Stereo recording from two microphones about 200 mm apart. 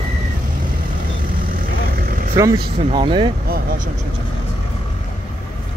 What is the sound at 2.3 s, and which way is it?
Speech, 20° right (ahead or behind).